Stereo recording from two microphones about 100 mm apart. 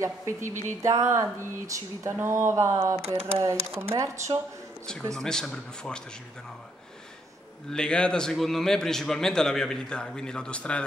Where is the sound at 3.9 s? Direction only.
30° right (ahead or behind).